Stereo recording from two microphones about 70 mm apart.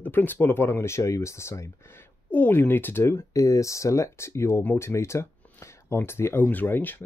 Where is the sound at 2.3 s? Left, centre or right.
Left.